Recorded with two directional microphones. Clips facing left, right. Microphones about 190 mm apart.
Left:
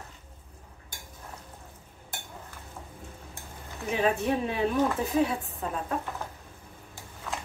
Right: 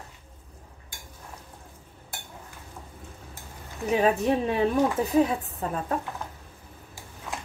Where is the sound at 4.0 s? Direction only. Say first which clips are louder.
Right 2 dB; 40° right (ahead or behind).